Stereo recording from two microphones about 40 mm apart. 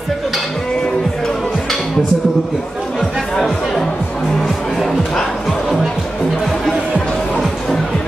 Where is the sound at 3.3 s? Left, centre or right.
Centre.